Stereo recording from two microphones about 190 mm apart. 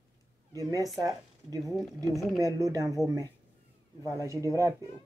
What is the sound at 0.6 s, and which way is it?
A woman's voice, 15° right (ahead or behind).